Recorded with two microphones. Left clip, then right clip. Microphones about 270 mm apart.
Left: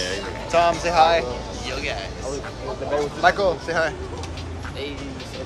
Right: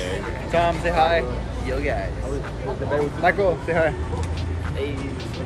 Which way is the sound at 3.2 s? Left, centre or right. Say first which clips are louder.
Left 2 dB; centre.